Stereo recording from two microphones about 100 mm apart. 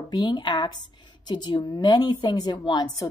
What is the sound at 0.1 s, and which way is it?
A woman's voice, 45° left (ahead or behind).